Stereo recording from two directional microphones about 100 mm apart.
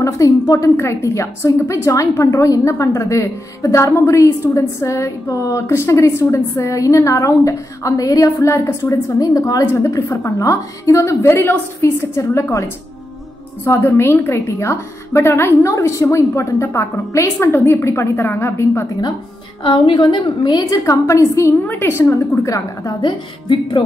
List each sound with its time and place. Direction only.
0.0 s a woman's voice: 35° left (ahead or behind)
9.2 s a woman's voice: 35° left (ahead or behind)
13.7 s a woman's voice: 25° left (ahead or behind)
19.6 s a woman's voice: 55° left (ahead or behind); by 22.9 s 35° left (ahead or behind)
23.0 s a woman's voice: 55° left (ahead or behind)